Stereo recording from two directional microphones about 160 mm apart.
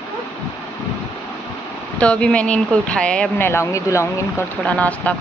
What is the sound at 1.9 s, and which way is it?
Speech, 5° left (ahead or behind).